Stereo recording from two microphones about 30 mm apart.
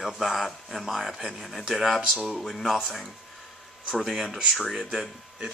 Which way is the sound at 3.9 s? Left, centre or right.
Centre.